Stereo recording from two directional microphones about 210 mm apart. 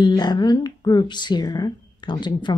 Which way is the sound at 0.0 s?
20° left (ahead or behind).